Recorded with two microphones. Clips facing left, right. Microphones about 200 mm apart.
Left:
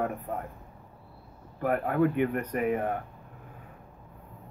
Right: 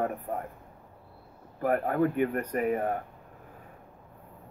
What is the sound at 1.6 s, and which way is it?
Speech, 35° right (ahead or behind).